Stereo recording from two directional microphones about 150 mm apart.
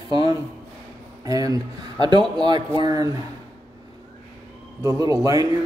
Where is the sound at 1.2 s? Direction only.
25° right (ahead or behind).